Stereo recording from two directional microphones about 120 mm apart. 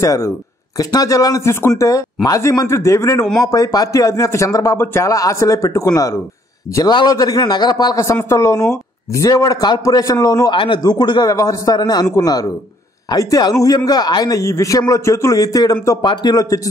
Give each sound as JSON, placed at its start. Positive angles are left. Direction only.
{"t": 0.0, "sound": "a man's voice", "side_deg": 25}
{"t": 10.5, "sound": "speech", "side_deg": 40}